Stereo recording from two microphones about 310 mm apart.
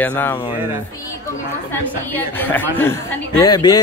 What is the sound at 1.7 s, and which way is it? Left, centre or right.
A man's voice, centre.